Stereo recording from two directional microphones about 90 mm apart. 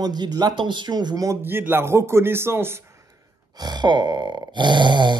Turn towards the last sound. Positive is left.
turn(degrees=-60)  # may be behind; listen again after turning